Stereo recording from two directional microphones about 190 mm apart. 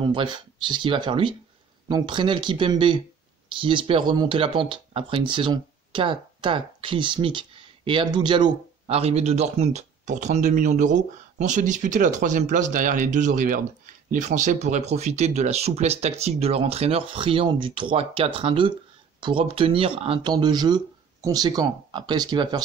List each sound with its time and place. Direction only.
0.0 s speech: 25° right (ahead or behind)